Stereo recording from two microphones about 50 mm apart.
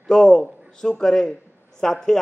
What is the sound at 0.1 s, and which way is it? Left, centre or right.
A man's voice, centre.